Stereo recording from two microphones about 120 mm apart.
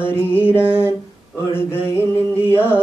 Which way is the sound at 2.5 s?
15° left (ahead or behind).